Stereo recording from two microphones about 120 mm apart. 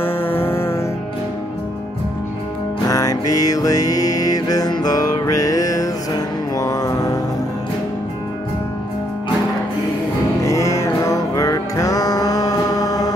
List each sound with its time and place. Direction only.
0.0 s music: 20° left (ahead or behind)
2.9 s music: 30° left (ahead or behind)
10.4 s music: 25° left (ahead or behind)